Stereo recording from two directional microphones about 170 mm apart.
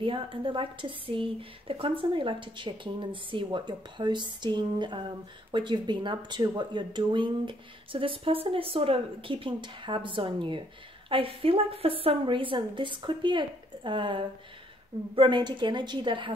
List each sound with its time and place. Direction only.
0.0 s a woman's voice: 30° right (ahead or behind)